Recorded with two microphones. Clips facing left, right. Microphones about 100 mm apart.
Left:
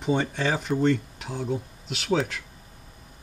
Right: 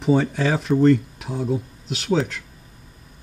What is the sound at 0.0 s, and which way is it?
Speech, centre (ahead or behind).